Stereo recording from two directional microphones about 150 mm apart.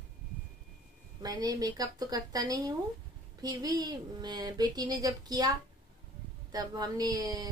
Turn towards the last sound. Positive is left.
turn(degrees=-25)  # may be behind; listen again after turning